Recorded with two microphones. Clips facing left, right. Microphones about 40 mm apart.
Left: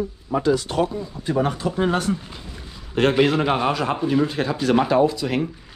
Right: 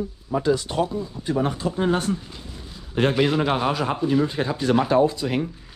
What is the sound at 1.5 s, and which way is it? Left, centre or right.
Speech, left.